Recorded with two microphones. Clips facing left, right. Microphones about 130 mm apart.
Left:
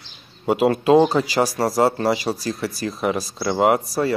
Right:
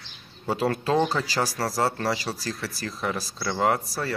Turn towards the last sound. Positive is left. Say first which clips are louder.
# left 7 dB
turn(degrees=20)  # may be behind; listen again after turning